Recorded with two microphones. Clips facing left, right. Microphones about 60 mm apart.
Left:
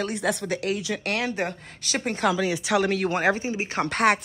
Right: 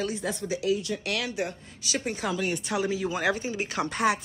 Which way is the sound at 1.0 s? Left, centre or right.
Left.